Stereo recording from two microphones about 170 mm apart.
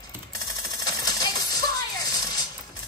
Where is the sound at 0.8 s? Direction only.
20° left (ahead or behind).